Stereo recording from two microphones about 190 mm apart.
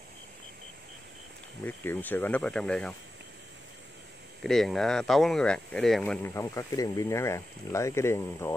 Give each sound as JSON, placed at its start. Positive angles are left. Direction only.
{"t": 1.6, "sound": "speech", "side_deg": 10}
{"t": 4.4, "sound": "speech", "side_deg": 0}
{"t": 6.2, "sound": "speech", "side_deg": 15}